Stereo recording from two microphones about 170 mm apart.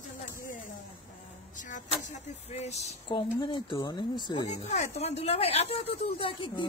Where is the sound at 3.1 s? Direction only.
30° left (ahead or behind).